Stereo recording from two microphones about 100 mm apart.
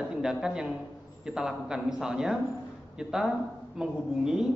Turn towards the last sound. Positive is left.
turn(degrees=-5)  # may be behind; listen again after turning